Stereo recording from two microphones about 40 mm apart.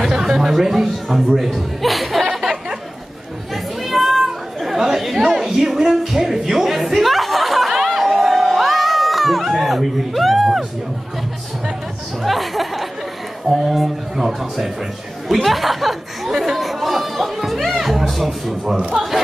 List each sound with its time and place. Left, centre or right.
0.0 s a man's voice: centre
3.8 s chatter: centre
5.4 s music: centre
8.1 s crowd: centre
12.2 s music: centre
13.5 s a sound: centre
16.3 s chatter: centre
18.0 s speech: centre
18.8 s a man's voice: centre